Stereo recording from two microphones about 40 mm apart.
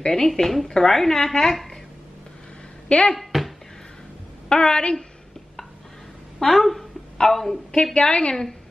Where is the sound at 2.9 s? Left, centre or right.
Left.